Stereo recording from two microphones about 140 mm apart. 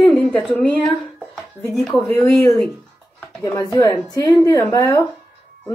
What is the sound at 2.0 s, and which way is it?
Speech, 15° left (ahead or behind).